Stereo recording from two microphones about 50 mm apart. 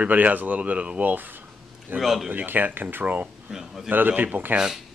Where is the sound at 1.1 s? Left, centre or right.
Right.